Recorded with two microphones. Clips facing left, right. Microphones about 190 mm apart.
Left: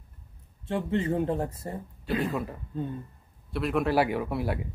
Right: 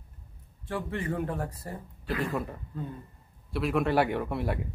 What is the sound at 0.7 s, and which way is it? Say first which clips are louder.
Speech: left 5 dB; 25° left (ahead or behind).